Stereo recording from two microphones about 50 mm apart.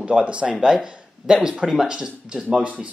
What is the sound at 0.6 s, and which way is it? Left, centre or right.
Speech, centre.